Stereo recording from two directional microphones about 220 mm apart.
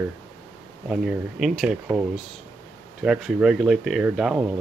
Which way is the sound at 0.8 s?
Centre (ahead or behind).